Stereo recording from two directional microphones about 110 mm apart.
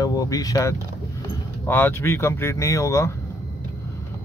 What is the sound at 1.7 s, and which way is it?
Speech, 20° left (ahead or behind).